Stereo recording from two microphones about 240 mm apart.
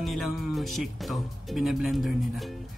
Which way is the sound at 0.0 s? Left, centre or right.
Centre.